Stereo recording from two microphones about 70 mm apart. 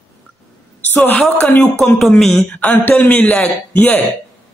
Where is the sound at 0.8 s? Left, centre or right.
Left.